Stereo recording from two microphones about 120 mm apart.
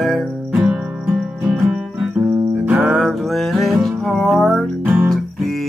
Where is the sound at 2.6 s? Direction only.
10° right (ahead or behind).